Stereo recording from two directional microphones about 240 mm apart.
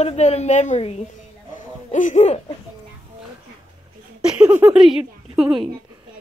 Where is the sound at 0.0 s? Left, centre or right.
Left.